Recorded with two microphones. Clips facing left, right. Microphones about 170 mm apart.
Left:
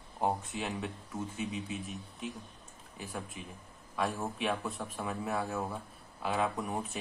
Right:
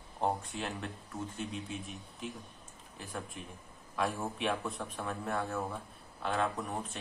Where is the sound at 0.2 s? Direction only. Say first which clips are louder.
Left 1 dB; centre (ahead or behind).